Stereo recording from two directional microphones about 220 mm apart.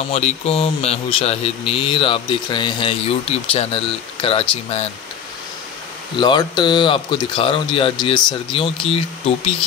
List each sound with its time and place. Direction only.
0.0 s speech: 30° left (ahead or behind)
6.1 s speech: 20° left (ahead or behind)